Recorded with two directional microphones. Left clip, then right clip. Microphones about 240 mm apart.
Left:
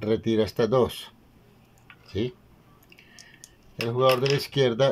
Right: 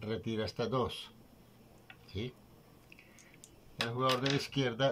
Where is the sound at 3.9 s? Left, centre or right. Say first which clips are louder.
Left 11 dB; left.